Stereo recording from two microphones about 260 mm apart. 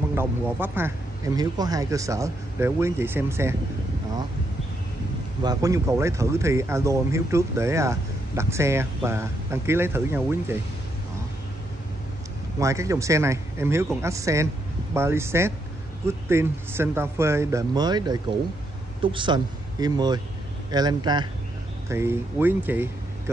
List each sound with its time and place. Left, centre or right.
0.1 s speech: centre
5.4 s speech: centre
12.5 s speech: centre